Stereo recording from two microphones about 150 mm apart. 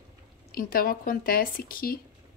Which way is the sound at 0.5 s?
75° left (ahead or behind).